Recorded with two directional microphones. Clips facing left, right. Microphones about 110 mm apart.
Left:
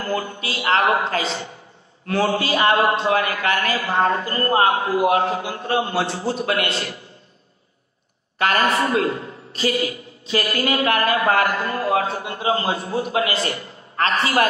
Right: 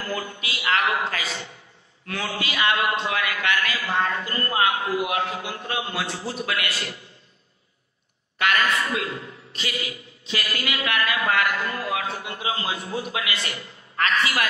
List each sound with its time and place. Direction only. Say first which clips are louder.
0.0 s a man's voice: left 5 dB; 40° left (ahead or behind)
8.4 s a man's voice: left 4 dB; 35° left (ahead or behind)